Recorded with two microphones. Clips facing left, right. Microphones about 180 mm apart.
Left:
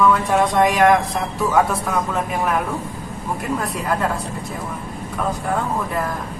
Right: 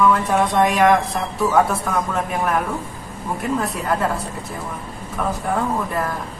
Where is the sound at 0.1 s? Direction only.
Centre (ahead or behind).